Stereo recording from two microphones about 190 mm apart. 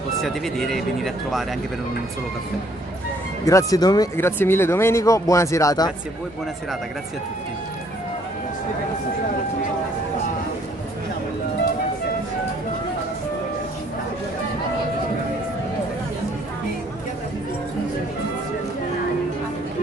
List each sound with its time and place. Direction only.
0.2 s speech: centre (ahead or behind)
3.4 s speech: 20° left (ahead or behind)